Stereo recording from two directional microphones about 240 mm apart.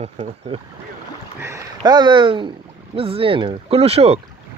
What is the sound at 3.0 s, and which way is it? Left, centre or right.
Speech, right.